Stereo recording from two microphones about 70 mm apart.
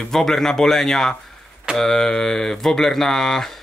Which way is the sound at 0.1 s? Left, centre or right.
Centre.